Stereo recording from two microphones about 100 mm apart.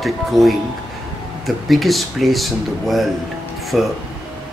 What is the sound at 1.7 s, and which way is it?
Speech, centre (ahead or behind).